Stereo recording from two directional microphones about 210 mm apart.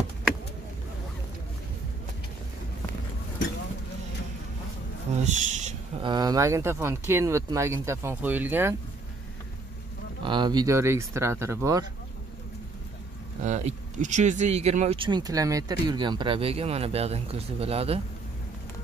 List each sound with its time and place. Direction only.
5.1 s a sound: 35° right (ahead or behind)
6.0 s speech: 20° right (ahead or behind)
10.2 s speech: 20° right (ahead or behind)
13.4 s speech: 35° right (ahead or behind)